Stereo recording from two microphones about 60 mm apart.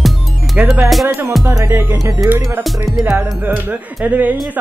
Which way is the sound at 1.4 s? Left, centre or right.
Right.